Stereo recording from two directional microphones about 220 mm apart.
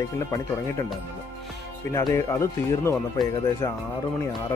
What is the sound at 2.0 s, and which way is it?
Speech, 15° left (ahead or behind).